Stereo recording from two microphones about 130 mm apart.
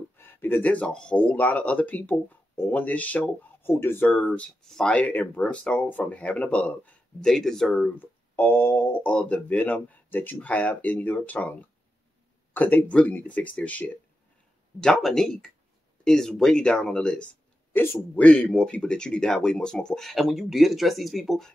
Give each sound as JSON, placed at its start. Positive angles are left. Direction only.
{"t": 0.2, "sound": "speech", "side_deg": 15}
{"t": 8.4, "sound": "speech", "side_deg": 20}
{"t": 12.5, "sound": "speech", "side_deg": 15}